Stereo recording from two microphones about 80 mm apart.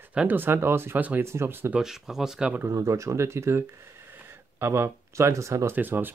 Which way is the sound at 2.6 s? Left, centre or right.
Right.